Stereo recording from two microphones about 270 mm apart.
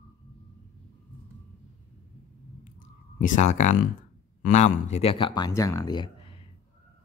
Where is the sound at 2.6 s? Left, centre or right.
Left.